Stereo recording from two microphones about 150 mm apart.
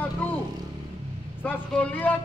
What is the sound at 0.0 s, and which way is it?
Vehicle, 10° left (ahead or behind).